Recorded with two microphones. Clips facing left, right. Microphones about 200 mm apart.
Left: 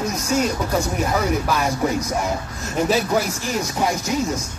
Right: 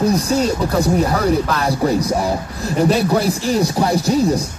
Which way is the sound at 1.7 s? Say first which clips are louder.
Right 5 dB; 35° right (ahead or behind).